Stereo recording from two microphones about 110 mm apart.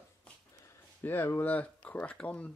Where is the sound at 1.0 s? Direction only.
20° left (ahead or behind).